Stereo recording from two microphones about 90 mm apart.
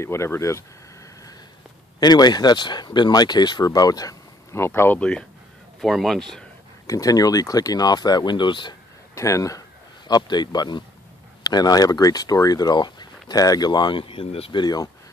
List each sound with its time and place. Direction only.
0.0 s speech: 30° left (ahead or behind)
2.0 s speech: 50° left (ahead or behind)
4.6 s speech: 25° left (ahead or behind)
5.8 s speech: centre (ahead or behind)
6.9 s speech: 40° left (ahead or behind); by 8.7 s 60° left (ahead or behind)
9.1 s speech: 35° left (ahead or behind)
10.0 s speech: 50° left (ahead or behind); by 14.6 s 90° left
14.6 s speech: 45° left (ahead or behind)